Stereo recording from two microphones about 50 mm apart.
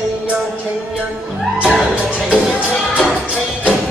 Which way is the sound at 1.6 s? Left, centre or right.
Centre.